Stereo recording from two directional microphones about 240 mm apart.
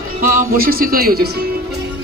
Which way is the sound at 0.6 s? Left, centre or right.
Right.